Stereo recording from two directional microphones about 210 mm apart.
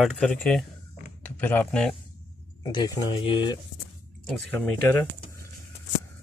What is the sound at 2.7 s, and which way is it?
Speech, 25° left (ahead or behind).